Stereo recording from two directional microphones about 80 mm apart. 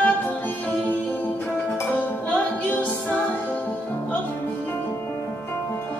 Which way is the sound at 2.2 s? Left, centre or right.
Centre.